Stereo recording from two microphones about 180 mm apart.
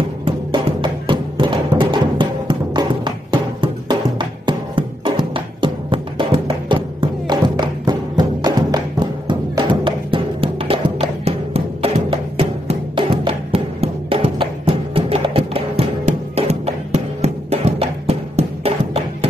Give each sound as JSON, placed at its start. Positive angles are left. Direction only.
{"t": 0.2, "sound": "music", "side_deg": -30}